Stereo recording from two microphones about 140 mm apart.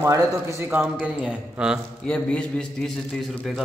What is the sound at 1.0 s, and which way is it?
Speech, 10° right (ahead or behind).